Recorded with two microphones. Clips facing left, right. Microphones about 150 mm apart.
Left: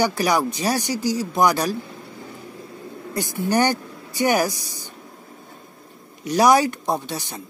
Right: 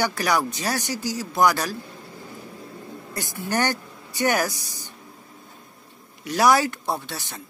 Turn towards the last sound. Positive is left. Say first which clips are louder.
# left 4 dB
turn(degrees=15)  # may be behind; listen again after turning